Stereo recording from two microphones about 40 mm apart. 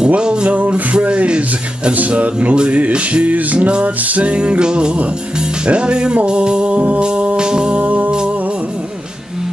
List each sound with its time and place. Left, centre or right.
0.2 s music: right
2.0 s music: right
2.5 s music: right
7.8 s music: right